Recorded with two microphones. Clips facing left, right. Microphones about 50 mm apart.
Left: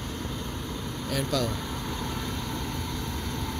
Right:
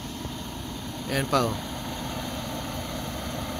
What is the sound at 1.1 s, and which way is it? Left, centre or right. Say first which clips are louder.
Speech: right 4 dB; right.